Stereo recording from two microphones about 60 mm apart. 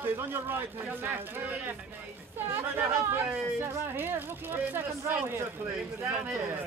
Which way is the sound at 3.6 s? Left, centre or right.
Right.